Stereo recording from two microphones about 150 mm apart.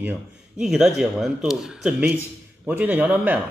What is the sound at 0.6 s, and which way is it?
Speech, 5° right (ahead or behind).